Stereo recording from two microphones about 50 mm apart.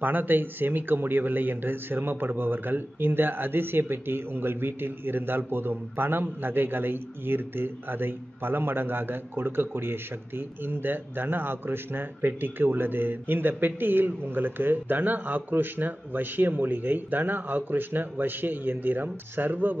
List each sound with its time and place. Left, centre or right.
0.0 s a man's voice: right